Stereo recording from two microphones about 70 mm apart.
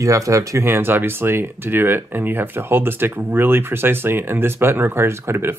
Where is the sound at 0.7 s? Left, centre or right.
Right.